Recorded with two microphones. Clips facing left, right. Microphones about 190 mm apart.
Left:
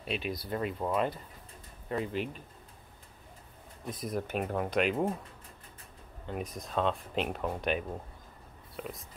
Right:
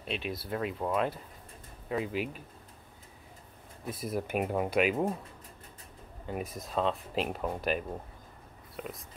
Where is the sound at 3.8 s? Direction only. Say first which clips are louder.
Right 1 dB; 5° right (ahead or behind).